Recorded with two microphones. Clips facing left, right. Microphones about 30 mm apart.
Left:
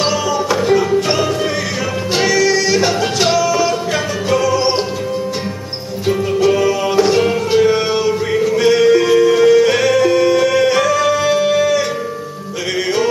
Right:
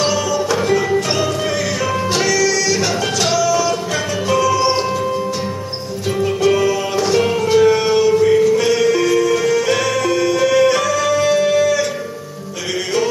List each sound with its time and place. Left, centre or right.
0.0 s music: centre
6.0 s music: centre